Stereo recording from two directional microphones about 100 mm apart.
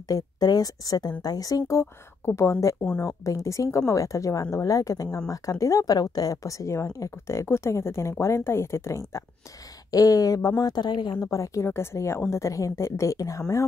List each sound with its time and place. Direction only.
0.1 s speech: 40° left (ahead or behind)